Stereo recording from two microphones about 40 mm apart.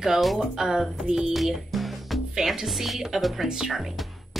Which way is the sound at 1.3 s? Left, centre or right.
Centre.